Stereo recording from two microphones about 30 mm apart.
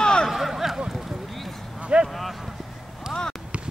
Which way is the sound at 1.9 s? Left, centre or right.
Right.